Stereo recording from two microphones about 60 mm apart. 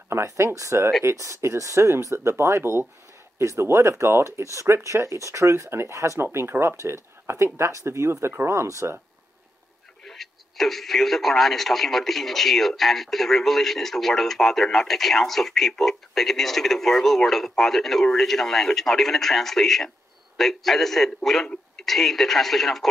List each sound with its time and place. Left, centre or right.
0.1 s speech: right
1.0 s speech: right
4.4 s speech: right
6.3 s speech: right
10.0 s speech: centre